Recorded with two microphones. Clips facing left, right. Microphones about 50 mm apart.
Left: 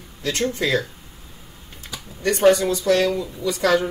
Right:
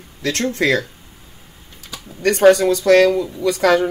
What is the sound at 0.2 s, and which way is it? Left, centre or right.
Speech, right.